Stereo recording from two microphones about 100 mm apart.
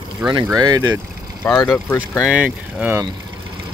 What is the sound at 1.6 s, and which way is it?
Speech, 20° left (ahead or behind).